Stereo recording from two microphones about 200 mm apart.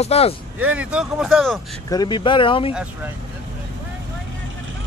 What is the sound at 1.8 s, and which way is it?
Speech, 20° left (ahead or behind).